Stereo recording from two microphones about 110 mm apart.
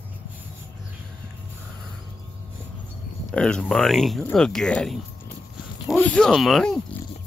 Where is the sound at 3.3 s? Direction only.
10° left (ahead or behind).